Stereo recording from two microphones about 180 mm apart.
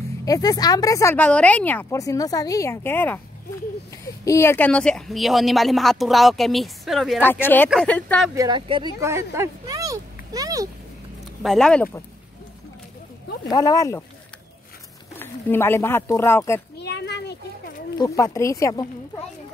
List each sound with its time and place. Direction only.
0.2 s speech: 20° left (ahead or behind); by 7.2 s centre (ahead or behind)
7.2 s speech: 10° left (ahead or behind)
8.4 s speech: 25° right (ahead or behind)
9.0 s a sound: 15° right (ahead or behind)
11.4 s speech: 5° left (ahead or behind)
13.5 s speech: 20° left (ahead or behind)
15.1 s speech: 10° left (ahead or behind)
16.7 s a sound: 65° left (ahead or behind)
17.9 s speech: 20° left (ahead or behind)